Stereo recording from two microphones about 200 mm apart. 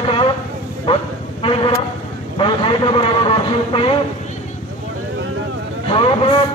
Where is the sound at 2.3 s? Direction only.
25° left (ahead or behind).